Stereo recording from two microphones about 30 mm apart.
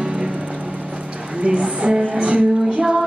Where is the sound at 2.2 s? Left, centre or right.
Right.